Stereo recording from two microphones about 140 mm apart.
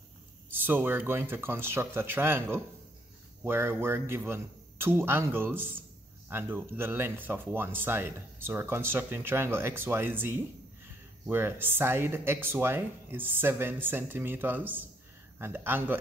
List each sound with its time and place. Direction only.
0.5 s speech: 15° right (ahead or behind)